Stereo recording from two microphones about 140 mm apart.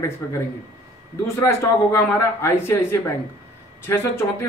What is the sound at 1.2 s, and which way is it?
A man's voice, 15° left (ahead or behind).